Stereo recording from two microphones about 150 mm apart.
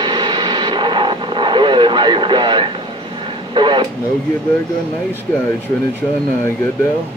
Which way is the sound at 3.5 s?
30° right (ahead or behind).